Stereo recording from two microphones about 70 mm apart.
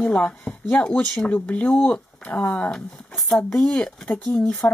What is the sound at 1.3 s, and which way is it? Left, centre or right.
Speech, left.